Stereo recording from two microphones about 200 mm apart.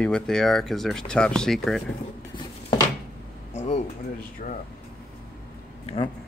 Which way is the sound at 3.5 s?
35° left (ahead or behind).